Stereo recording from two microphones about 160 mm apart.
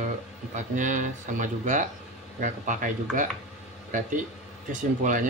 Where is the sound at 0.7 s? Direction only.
50° right (ahead or behind).